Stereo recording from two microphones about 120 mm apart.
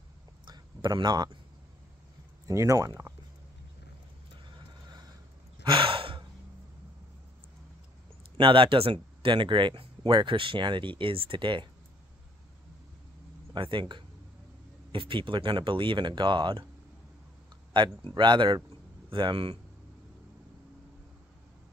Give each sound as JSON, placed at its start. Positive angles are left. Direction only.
{"t": 0.5, "sound": "a sound", "side_deg": -40}
{"t": 2.4, "sound": "speech", "side_deg": -25}
{"t": 5.6, "sound": "gasp", "side_deg": -45}
{"t": 8.4, "sound": "speech", "side_deg": -45}
{"t": 13.6, "sound": "speech", "side_deg": -45}
{"t": 17.7, "sound": "speech", "side_deg": -40}